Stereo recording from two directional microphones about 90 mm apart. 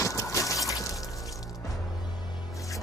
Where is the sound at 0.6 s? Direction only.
40° left (ahead or behind).